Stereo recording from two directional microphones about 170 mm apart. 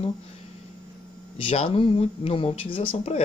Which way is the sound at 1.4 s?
35° left (ahead or behind).